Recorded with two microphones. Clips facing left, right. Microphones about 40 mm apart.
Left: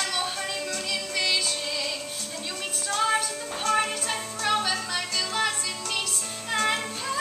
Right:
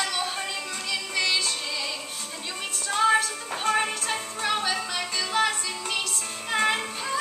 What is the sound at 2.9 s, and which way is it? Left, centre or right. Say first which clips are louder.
Music: right 3 dB; centre.